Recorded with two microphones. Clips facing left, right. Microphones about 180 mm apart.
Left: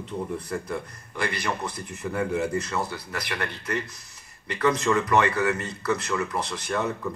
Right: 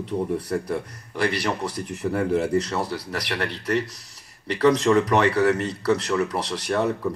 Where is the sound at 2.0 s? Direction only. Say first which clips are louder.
Right 4 dB; 35° right (ahead or behind).